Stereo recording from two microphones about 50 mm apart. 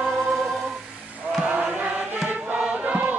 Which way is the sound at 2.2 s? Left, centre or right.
Right.